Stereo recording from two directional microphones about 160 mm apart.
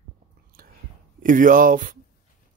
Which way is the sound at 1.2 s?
60° right (ahead or behind).